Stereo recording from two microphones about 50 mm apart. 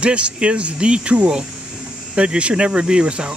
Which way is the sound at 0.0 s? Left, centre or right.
Right.